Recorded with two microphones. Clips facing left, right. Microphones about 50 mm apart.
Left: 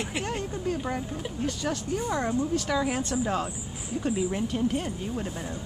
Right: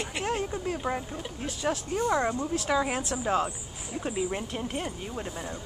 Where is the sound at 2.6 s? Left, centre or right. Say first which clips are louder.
Even; centre.